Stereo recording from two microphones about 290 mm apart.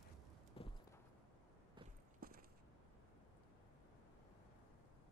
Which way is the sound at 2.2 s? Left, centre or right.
Right.